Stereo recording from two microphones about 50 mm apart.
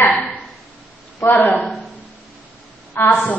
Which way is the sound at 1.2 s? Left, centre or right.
Left.